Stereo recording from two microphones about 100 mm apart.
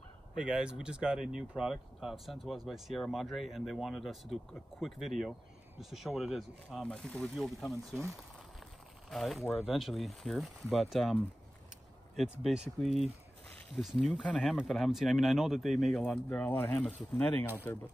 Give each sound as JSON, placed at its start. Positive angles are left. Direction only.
{"t": 0.4, "sound": "speech", "side_deg": -10}
{"t": 6.8, "sound": "speech", "side_deg": 10}
{"t": 9.1, "sound": "speech", "side_deg": 0}
{"t": 12.2, "sound": "speech", "side_deg": -5}
{"t": 13.7, "sound": "speech", "side_deg": 0}
{"t": 16.3, "sound": "speech", "side_deg": 20}